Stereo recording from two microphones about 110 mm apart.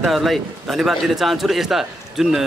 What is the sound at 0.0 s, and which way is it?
A man's voice, centre (ahead or behind).